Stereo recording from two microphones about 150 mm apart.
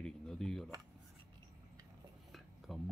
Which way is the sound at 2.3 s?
Centre (ahead or behind).